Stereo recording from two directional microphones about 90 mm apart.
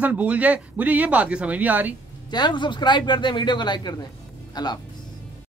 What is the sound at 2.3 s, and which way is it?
Speech, 55° left (ahead or behind).